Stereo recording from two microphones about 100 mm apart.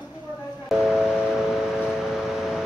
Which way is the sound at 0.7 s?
5° right (ahead or behind).